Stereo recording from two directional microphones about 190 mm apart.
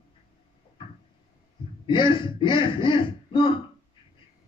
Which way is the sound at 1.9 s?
25° left (ahead or behind).